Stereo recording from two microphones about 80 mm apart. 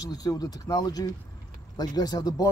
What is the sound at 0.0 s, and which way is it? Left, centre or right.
Speech, left.